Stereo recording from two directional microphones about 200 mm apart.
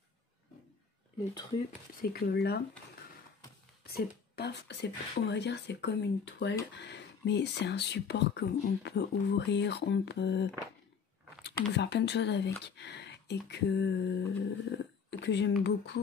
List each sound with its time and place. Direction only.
2.0 s speech: 50° left (ahead or behind)
3.8 s speech: 55° left (ahead or behind)
12.6 s a sound: 60° left (ahead or behind)